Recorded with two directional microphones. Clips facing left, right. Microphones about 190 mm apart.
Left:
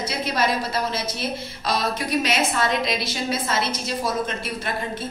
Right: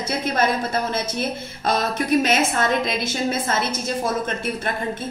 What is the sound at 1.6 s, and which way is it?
A woman's voice, 50° right (ahead or behind).